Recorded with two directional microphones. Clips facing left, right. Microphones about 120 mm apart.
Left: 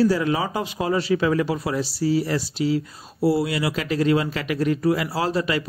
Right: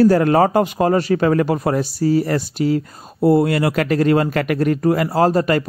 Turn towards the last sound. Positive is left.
turn(degrees=-50)  # may be behind; listen again after turning